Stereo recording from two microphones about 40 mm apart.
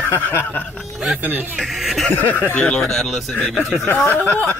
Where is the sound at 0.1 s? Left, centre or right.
Left.